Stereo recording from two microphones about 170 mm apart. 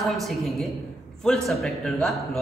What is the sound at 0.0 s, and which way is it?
A woman's voice, centre (ahead or behind).